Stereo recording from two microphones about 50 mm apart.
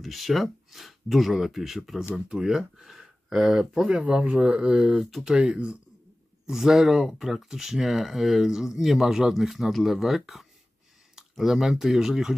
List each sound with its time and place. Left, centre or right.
0.0 s speech: centre
2.1 s speech: centre
3.9 s speech: right